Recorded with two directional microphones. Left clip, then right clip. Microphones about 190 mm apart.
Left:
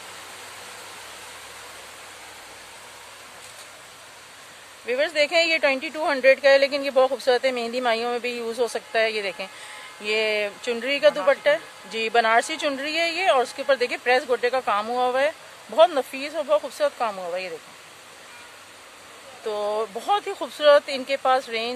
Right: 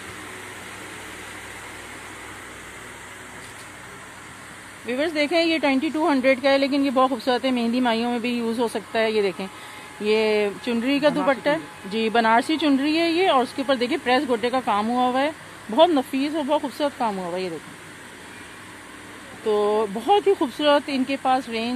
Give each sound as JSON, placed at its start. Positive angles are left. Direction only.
{"t": 4.8, "sound": "speech", "side_deg": 20}
{"t": 19.4, "sound": "speech", "side_deg": 15}